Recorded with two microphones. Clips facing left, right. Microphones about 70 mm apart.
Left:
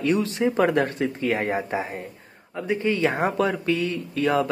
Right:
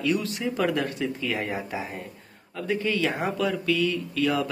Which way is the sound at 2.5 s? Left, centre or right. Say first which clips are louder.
Left 3 dB; left.